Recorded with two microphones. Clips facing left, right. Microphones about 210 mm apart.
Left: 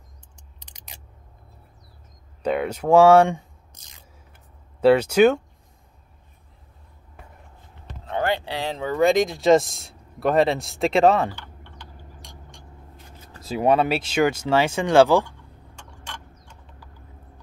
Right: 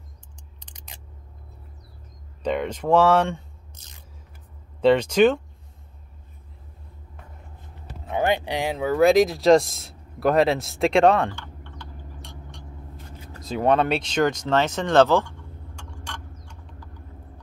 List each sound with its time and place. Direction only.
2.4 s speech: 5° left (ahead or behind)
4.7 s speech: 5° left (ahead or behind)
8.2 s speech: 15° right (ahead or behind)
8.7 s speech: 5° right (ahead or behind)
12.2 s vehicle: 15° left (ahead or behind)
13.4 s speech: 10° left (ahead or behind)
16.1 s a sound: 5° left (ahead or behind)